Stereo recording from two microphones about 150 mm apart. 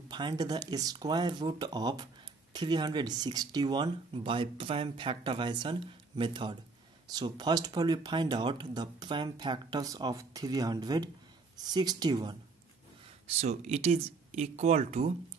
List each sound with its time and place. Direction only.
0.1 s speech: 30° right (ahead or behind)
13.4 s speech: 45° right (ahead or behind)